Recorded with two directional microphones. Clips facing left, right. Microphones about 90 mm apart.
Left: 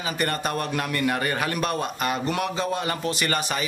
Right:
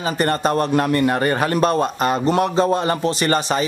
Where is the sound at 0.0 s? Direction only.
35° right (ahead or behind).